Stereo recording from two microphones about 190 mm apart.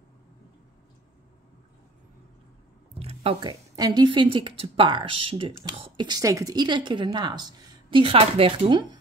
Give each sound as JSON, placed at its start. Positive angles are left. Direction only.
{"t": 2.9, "sound": "speech", "side_deg": -30}